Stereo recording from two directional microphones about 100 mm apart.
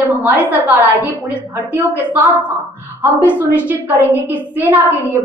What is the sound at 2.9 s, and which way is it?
A woman's voice, 20° right (ahead or behind).